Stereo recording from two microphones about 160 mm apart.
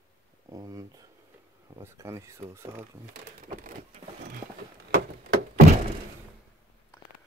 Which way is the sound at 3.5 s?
55° right (ahead or behind).